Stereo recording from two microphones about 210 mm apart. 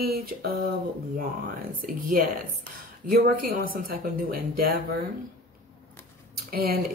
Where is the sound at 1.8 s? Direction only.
40° right (ahead or behind).